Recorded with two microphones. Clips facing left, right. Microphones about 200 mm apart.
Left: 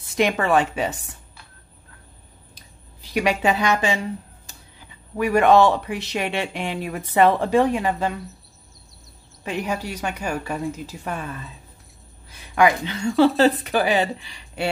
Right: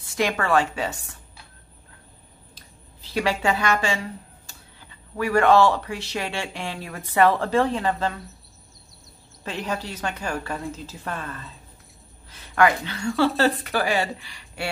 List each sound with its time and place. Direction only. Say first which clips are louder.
0.1 s speech: left 3 dB; 20° left (ahead or behind)
2.5 s a sound: even; 15° left (ahead or behind)
4.5 s speech: left 2 dB; 15° left (ahead or behind)
9.4 s speech: left 3 dB; 15° left (ahead or behind)